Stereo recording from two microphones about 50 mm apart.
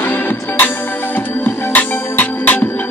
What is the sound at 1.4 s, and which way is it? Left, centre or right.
Music, left.